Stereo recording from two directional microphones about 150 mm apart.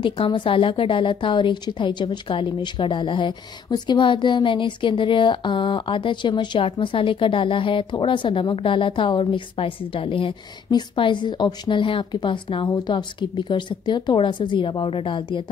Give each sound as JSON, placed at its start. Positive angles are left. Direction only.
{"t": 0.0, "sound": "a woman's voice", "side_deg": 35}